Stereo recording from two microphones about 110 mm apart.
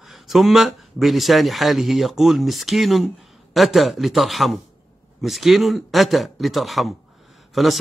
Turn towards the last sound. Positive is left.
turn(degrees=0)  # may be behind; listen again after turning